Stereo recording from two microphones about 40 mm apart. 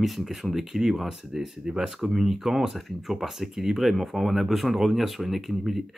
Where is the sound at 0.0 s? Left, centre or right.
Centre.